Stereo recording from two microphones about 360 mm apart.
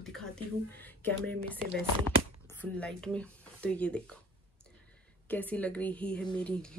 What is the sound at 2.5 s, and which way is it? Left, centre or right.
Speech, centre.